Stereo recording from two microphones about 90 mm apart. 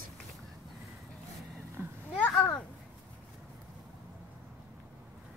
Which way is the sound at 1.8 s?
25° right (ahead or behind).